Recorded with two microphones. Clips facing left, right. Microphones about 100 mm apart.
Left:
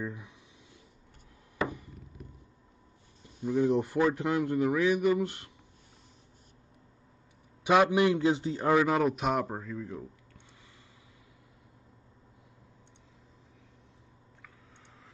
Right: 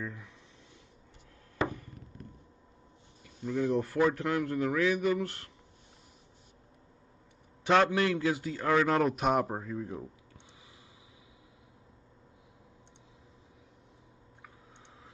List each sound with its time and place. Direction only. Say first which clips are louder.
0.0 s a man's voice: left 3 dB; 15° left (ahead or behind)
1.7 s chop: left 1 dB; 15° left (ahead or behind)
3.4 s a man's voice: left 3 dB; 15° left (ahead or behind)
7.6 s a man's voice: left 2 dB; 10° left (ahead or behind)
8.8 s a man's voice: even; centre (ahead or behind)
9.5 s speech: right 1 dB; 15° right (ahead or behind)